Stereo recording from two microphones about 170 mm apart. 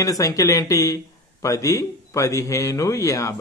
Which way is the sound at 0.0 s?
20° left (ahead or behind).